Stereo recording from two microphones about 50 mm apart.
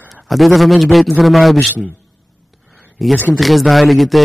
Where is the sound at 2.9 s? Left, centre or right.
Centre.